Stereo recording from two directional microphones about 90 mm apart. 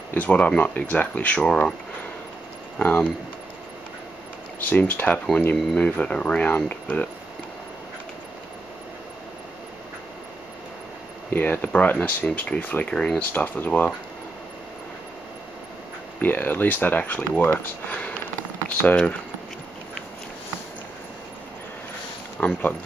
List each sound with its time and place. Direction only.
0.1 s speech: 15° left (ahead or behind)
2.8 s speech: 20° left (ahead or behind)
4.6 s speech: 20° left (ahead or behind)
11.3 s speech: 20° left (ahead or behind)
16.2 s speech: 20° left (ahead or behind)
22.4 s speech: 20° left (ahead or behind)